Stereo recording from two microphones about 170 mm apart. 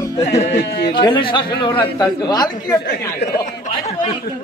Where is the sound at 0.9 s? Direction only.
30° left (ahead or behind).